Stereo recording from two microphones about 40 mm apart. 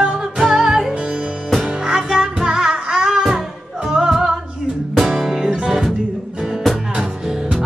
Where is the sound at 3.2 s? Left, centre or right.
Centre.